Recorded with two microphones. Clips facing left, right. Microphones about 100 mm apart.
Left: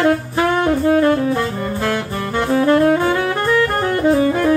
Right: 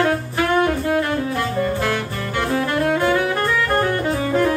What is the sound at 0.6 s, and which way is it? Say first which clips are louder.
Saxophone: left 5 dB; 25° left (ahead or behind).